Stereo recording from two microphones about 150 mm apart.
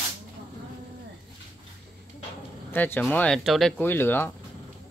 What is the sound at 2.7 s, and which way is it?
Speech, 15° left (ahead or behind).